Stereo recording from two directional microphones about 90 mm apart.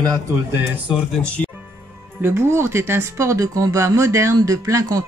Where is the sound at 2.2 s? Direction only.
25° right (ahead or behind).